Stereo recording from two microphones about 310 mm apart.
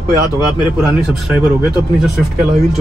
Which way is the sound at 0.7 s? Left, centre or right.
Centre.